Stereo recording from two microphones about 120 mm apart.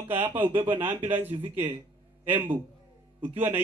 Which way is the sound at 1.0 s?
15° right (ahead or behind).